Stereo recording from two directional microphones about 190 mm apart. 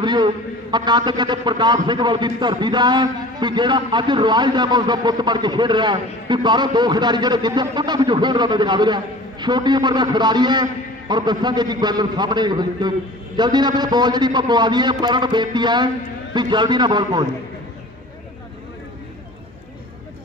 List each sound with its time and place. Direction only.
0.0 s a man's voice: 25° right (ahead or behind)